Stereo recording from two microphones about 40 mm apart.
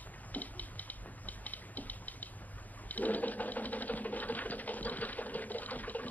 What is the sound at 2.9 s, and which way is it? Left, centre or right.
Sewing machine, left.